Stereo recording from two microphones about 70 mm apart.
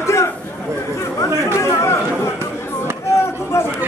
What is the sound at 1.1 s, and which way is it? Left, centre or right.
Chatter, left.